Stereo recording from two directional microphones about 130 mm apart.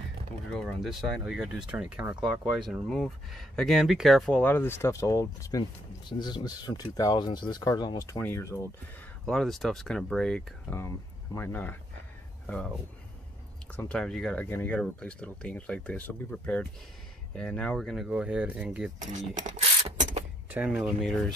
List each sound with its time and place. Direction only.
0.5 s speech: centre (ahead or behind)
2.7 s speech: 5° left (ahead or behind)
4.3 s speech: 15° left (ahead or behind)
9.2 s speech: centre (ahead or behind)
10.8 s speech: 20° left (ahead or behind)
12.4 s speech: 5° left (ahead or behind)
13.7 s speech: 5° left (ahead or behind); by 18.9 s 10° right (ahead or behind)
18.9 s speech: 70° right (ahead or behind)
20.5 s speech: 10° right (ahead or behind)